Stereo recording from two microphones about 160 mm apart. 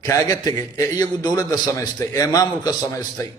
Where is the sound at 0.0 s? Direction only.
20° left (ahead or behind).